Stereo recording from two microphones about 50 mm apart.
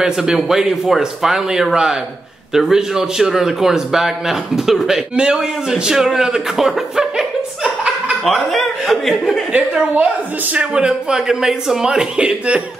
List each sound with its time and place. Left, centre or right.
0.0 s speech: centre
5.1 s speech: centre
8.2 s speech: centre
9.5 s a woman's voice: right